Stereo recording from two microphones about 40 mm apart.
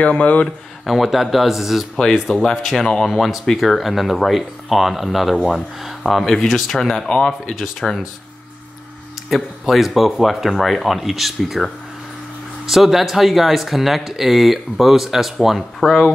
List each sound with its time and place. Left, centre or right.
0.0 s speech: left
0.8 s speech: centre
7.8 s speech: centre
9.3 s speech: centre
15.8 s speech: centre